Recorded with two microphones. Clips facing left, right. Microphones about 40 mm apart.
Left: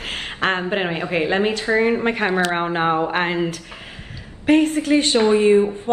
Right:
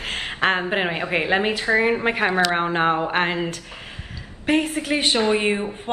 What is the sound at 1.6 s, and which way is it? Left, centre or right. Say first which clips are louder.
Speech: left 1 dB; right.